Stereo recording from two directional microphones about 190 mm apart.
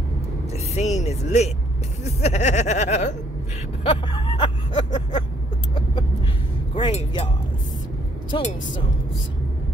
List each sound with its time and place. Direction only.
0.5 s vehicle: 35° left (ahead or behind)
2.0 s speech: 35° left (ahead or behind)
3.8 s vehicle: 25° left (ahead or behind)
6.7 s a sound: 30° left (ahead or behind)